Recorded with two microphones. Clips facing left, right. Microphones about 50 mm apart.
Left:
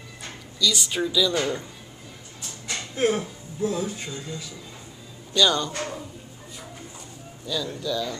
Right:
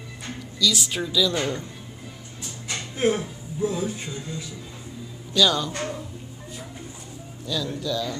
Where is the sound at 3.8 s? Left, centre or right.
Centre.